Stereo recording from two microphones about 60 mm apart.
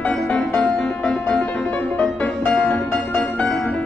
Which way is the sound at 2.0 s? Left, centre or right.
Centre.